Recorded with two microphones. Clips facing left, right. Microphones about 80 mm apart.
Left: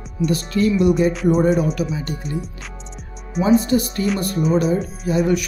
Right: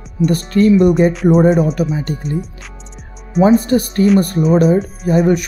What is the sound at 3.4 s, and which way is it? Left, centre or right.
Speech, right.